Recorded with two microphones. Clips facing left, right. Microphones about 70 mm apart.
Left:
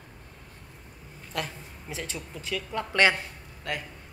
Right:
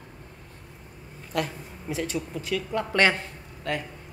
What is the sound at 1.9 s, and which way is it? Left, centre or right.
Speech, right.